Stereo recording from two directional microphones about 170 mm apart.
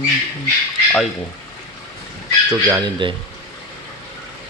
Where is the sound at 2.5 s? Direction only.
20° right (ahead or behind).